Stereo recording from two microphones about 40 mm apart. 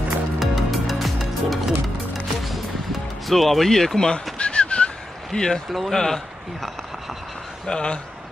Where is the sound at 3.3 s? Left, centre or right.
Centre.